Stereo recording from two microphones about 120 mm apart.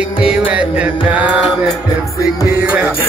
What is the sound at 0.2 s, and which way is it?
Music, 10° right (ahead or behind).